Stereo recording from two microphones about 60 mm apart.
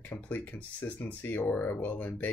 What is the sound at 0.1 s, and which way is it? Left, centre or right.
Speech, left.